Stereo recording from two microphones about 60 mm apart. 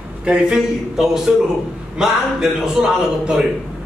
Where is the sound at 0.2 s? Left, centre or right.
Centre.